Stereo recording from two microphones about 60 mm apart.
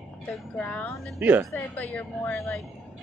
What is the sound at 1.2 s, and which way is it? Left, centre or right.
Speech, right.